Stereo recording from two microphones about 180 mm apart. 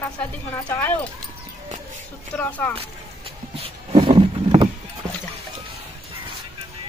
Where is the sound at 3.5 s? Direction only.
30° right (ahead or behind).